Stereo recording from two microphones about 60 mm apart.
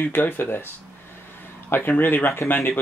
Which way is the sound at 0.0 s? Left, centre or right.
Left.